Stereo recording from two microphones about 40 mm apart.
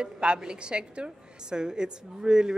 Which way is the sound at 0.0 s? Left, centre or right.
Right.